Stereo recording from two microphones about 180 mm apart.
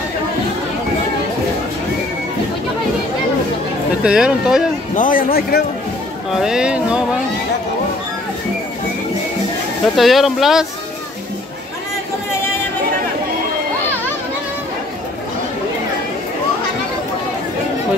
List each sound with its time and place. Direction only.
4.0 s speech: 5° right (ahead or behind)
4.9 s a man's voice: 50° left (ahead or behind)
6.4 s speech: 5° right (ahead or behind)
9.9 s speech: centre (ahead or behind)